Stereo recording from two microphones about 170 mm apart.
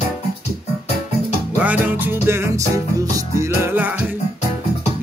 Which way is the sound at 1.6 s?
10° right (ahead or behind).